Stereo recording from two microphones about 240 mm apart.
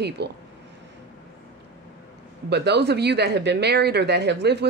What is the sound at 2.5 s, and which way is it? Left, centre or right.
Speech, right.